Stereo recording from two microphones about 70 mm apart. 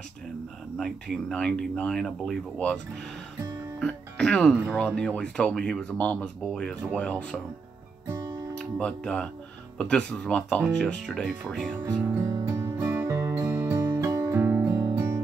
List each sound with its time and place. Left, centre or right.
0.7 s speech: centre
1.3 s speech: centre
3.8 s music: centre
4.6 s speech: centre
8.5 s speech: centre
11.8 s music: right
12.3 s music: right
12.7 s music: right
14.7 s music: right